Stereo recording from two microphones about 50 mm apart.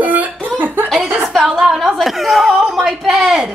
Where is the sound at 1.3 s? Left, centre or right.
Centre.